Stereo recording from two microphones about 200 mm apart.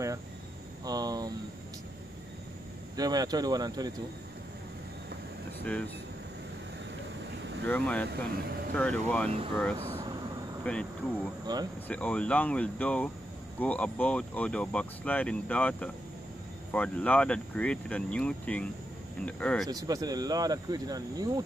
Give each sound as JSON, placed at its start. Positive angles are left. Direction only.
{"t": 0.8, "sound": "a sound", "side_deg": -20}
{"t": 3.0, "sound": "speech", "side_deg": -20}
{"t": 5.6, "sound": "speech", "side_deg": 5}
{"t": 7.6, "sound": "speech", "side_deg": 5}
{"t": 10.6, "sound": "insect", "side_deg": 5}
{"t": 11.5, "sound": "speech", "side_deg": -20}
{"t": 11.9, "sound": "speech", "side_deg": 5}
{"t": 19.7, "sound": "speech", "side_deg": -15}